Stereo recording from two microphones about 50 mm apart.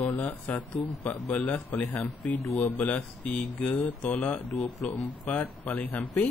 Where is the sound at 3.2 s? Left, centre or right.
Left.